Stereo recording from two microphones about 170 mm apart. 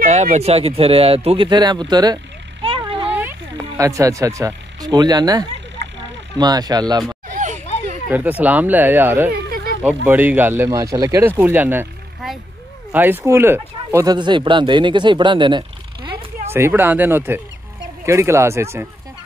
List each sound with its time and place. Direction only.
0.1 s speech: 40° right (ahead or behind); by 2.1 s 25° right (ahead or behind)
2.6 s vehicle: 30° right (ahead or behind)
3.1 s speech: 10° right (ahead or behind)
8.1 s speech: 10° right (ahead or behind)
9.3 s a sound: 60° right (ahead or behind)
10.0 s speech: 10° right (ahead or behind)
14.1 s speech: 25° right (ahead or behind)
16.4 s speech: 15° right (ahead or behind)